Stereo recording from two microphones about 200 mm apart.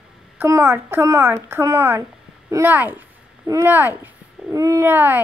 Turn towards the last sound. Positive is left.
turn(degrees=-10)  # may be behind; listen again after turning